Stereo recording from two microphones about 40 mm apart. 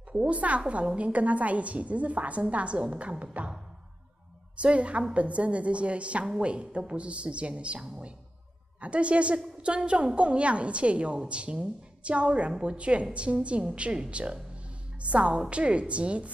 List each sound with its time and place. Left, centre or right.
0.2 s a woman's voice: right
4.6 s a woman's voice: right
7.8 s a woman's voice: centre
8.8 s a woman's voice: right